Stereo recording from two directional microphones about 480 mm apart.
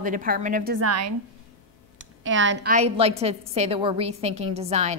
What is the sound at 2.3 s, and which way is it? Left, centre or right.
A woman's voice, right.